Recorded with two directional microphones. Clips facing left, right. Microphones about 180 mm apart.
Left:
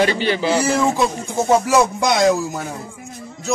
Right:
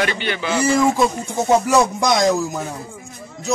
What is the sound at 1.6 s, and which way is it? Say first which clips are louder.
Music: even; 5° left (ahead or behind).